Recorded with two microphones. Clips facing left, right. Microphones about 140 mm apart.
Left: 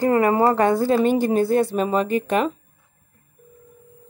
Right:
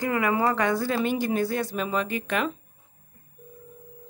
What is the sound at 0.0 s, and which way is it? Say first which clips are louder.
A woman's voice: left 7 dB; 35° left (ahead or behind).